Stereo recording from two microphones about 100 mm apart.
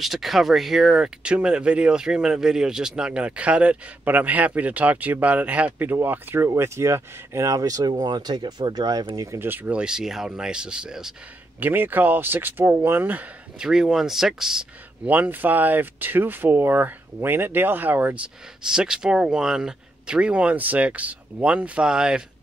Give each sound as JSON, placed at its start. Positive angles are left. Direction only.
{"t": 0.0, "sound": "speech", "side_deg": 0}
{"t": 9.4, "sound": "speech", "side_deg": -20}
{"t": 11.6, "sound": "speech", "side_deg": -20}
{"t": 15.0, "sound": "speech", "side_deg": -15}